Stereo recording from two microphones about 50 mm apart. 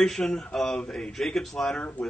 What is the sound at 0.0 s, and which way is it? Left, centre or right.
Speech, centre.